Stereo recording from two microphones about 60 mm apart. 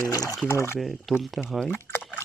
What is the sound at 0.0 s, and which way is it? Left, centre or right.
Speech, left.